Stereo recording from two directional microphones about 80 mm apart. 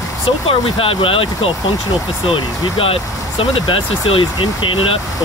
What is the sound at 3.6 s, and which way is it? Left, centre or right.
Speech, left.